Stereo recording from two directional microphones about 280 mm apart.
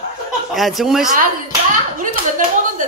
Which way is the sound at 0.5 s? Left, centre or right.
Centre.